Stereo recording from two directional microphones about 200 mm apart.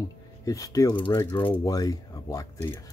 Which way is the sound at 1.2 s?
10° left (ahead or behind).